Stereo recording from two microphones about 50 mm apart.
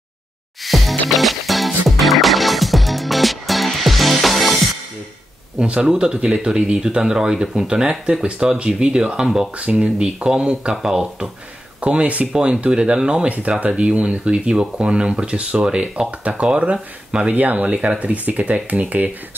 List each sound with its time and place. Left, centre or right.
0.7 s music: centre
5.6 s speech: centre
9.6 s speech: right
11.8 s speech: right
17.3 s speech: right